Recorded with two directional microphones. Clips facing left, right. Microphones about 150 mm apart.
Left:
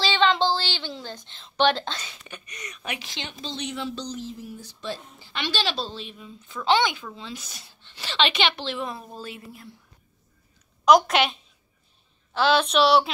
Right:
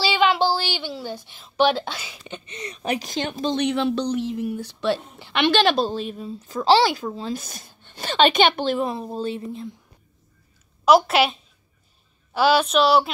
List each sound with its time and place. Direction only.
0.0 s a sound: 10° right (ahead or behind)
2.2 s speech: 25° right (ahead or behind); by 8.8 s 45° right (ahead or behind)
8.8 s a woman's voice: 30° right (ahead or behind)
10.9 s a woman's voice: 5° right (ahead or behind)